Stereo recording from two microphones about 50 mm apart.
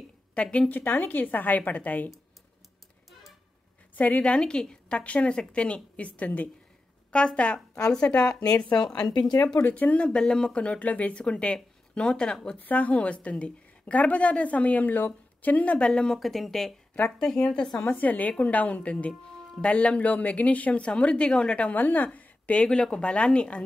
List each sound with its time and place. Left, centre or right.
0.3 s a woman's voice: left
3.9 s a sound: left
4.2 s a woman's voice: centre
4.9 s speech: left
7.1 s speech: left
9.6 s a woman's voice: left
10.0 s speech: centre
12.5 s speech: left
15.9 s speech: centre
16.2 s speech: centre
17.8 s a woman's voice: left